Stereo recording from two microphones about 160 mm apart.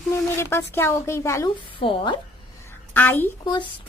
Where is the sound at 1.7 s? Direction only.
35° left (ahead or behind).